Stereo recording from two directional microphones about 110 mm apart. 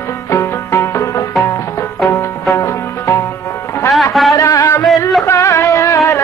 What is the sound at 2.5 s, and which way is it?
Music, 25° left (ahead or behind).